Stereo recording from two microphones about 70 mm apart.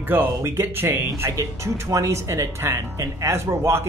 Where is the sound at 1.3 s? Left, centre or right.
Right.